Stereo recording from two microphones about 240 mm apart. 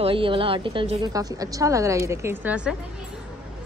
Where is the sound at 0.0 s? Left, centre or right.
Right; by 2.7 s centre.